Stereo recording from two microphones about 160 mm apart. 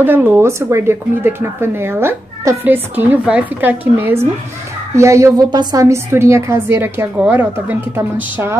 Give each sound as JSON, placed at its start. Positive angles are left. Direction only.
{"t": 0.0, "sound": "a woman's voice", "side_deg": -10}